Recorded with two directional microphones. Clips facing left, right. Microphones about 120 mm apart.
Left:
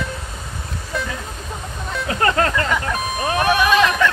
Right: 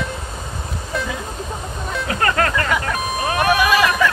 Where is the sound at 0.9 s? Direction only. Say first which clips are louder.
Right 1 dB; centre (ahead or behind).